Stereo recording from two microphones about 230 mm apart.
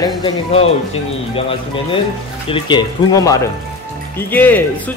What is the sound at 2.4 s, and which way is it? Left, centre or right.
Speech, left.